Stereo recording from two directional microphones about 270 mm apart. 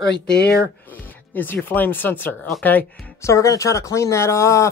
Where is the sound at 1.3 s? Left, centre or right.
Centre.